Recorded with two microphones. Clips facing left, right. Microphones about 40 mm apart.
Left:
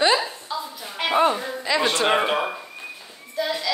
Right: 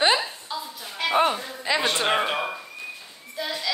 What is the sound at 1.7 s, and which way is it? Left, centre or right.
Speech, centre.